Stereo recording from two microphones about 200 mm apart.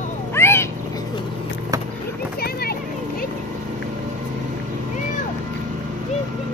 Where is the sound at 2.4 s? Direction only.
50° left (ahead or behind).